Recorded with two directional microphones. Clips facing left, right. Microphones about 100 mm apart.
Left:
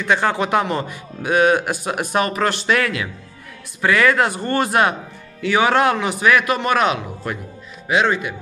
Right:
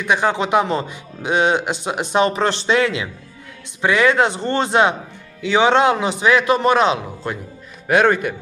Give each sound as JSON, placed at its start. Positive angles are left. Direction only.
{"t": 0.0, "sound": "a man's voice", "side_deg": -15}
{"t": 7.9, "sound": "speech", "side_deg": -50}